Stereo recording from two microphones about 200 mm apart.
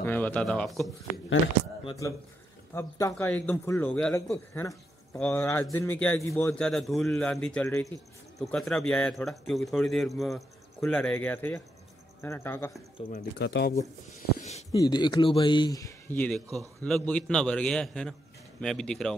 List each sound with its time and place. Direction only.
0.0 s speech: 10° left (ahead or behind)
1.9 s a man's voice: 15° left (ahead or behind)
13.0 s speech: 30° left (ahead or behind)
13.4 s speech: 55° left (ahead or behind)
14.7 s speech: 20° left (ahead or behind); by 19.1 s 5° left (ahead or behind)